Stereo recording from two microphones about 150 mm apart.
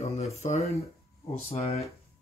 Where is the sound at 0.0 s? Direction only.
45° left (ahead or behind).